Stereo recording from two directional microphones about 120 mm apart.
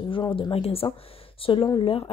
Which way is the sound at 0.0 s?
45° left (ahead or behind).